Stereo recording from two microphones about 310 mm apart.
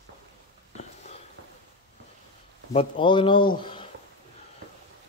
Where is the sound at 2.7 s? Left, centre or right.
Centre.